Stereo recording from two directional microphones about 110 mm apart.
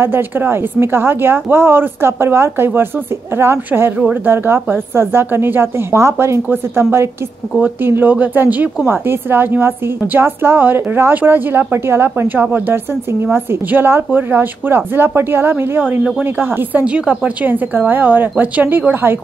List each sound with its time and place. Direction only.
0.0 s speech: 20° right (ahead or behind)